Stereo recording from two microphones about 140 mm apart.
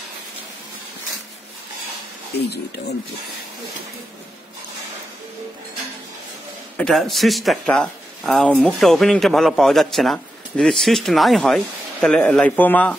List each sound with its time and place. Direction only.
6.8 s a man's voice: centre (ahead or behind)